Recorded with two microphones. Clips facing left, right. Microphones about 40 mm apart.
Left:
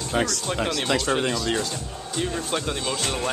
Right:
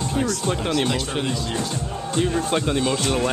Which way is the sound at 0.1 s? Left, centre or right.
Left.